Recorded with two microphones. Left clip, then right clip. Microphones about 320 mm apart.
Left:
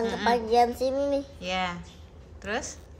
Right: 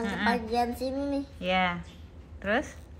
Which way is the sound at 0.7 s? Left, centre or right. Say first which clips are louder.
Left 6 dB; centre.